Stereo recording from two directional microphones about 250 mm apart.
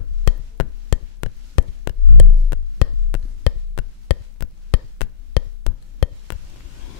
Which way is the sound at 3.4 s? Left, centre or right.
Left.